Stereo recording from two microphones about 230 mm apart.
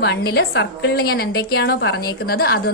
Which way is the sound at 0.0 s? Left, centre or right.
Left.